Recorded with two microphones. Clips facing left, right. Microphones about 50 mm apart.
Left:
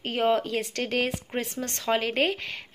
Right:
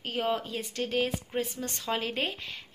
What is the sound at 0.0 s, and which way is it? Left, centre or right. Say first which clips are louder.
Speech: left 6 dB; left.